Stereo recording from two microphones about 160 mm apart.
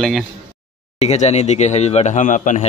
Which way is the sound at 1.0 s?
45° left (ahead or behind).